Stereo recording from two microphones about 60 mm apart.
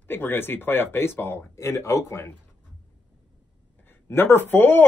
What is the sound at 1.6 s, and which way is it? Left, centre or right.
Speech, left.